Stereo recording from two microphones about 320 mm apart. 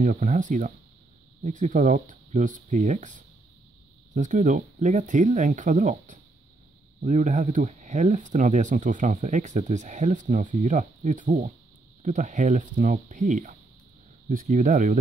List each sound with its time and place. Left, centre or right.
0.0 s speech: right